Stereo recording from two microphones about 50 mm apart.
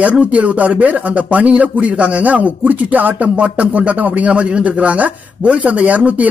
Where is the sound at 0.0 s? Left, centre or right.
Right.